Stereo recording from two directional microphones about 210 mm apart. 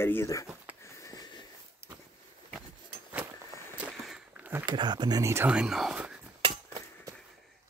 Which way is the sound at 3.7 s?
5° right (ahead or behind).